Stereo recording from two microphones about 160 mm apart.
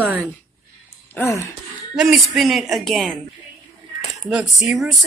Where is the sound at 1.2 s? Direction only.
15° left (ahead or behind).